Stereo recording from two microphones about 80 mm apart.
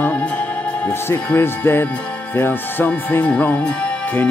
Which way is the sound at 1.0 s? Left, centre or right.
Left.